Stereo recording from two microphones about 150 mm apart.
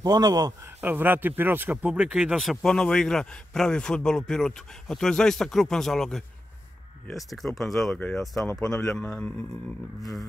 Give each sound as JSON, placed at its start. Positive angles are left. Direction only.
{"t": 0.0, "sound": "speech", "side_deg": -25}
{"t": 0.7, "sound": "speech", "side_deg": -15}
{"t": 2.3, "sound": "a man's voice", "side_deg": 0}